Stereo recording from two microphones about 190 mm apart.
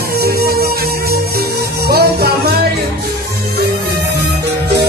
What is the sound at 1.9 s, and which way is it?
Music, 55° right (ahead or behind).